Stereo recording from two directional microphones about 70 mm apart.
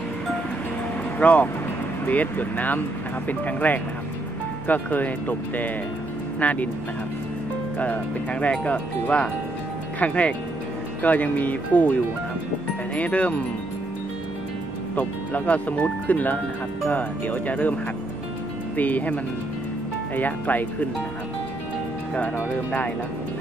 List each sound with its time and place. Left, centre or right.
1.2 s speech: centre
7.8 s speech: centre
15.0 s speech: left
18.8 s speech: left
20.2 s speech: left